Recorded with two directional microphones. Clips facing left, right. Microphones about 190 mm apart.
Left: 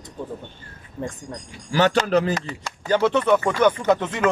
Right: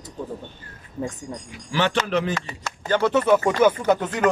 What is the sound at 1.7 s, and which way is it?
Speech, 40° left (ahead or behind).